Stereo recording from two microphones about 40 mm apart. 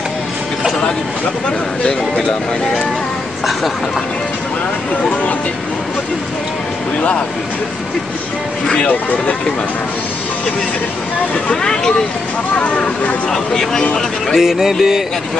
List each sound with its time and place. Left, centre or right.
11.6 s speech: centre
12.5 s speech: left
13.3 s speech: centre
14.3 s music: centre